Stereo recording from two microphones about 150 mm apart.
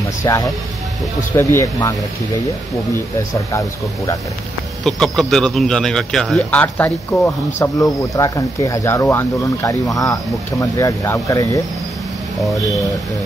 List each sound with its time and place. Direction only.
0.2 s speech: 25° left (ahead or behind)
3.5 s speech: 20° left (ahead or behind)
4.8 s speech: centre (ahead or behind); by 11.6 s 20° left (ahead or behind)